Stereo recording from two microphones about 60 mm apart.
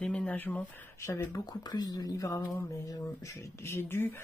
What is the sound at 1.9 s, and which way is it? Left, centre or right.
Speech, left.